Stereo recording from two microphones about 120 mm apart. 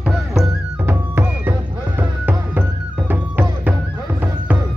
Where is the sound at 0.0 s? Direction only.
5° right (ahead or behind).